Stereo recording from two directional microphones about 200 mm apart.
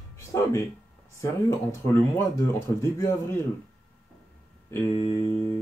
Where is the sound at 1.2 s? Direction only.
15° left (ahead or behind).